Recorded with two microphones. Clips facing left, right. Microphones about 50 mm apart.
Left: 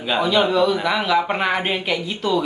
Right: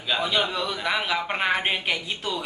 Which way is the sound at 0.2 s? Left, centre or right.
Centre.